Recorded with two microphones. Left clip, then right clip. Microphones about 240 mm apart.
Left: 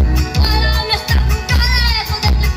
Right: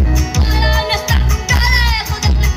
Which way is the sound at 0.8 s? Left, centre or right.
Right.